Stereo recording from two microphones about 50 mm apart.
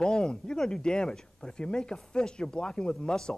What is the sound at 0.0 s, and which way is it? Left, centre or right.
A man's voice, centre.